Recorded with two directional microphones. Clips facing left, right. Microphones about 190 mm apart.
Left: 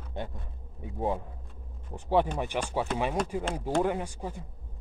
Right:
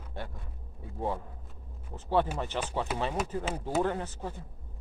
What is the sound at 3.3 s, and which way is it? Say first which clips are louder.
Speech: left 2 dB; 15° left (ahead or behind).